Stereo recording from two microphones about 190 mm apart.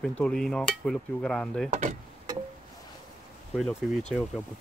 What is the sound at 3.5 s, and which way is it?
Cutlery, centre (ahead or behind).